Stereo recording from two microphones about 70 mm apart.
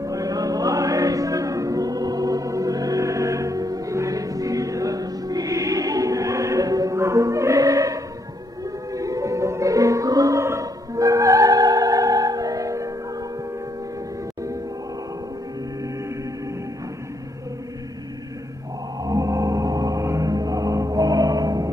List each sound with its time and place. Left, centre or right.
0.0 s music: right
7.0 s music: right
19.0 s gong: right
20.1 s music: right